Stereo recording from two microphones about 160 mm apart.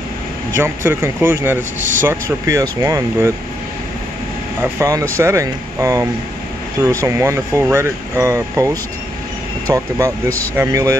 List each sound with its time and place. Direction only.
0.6 s speech: 15° right (ahead or behind)
4.6 s speech: 15° right (ahead or behind)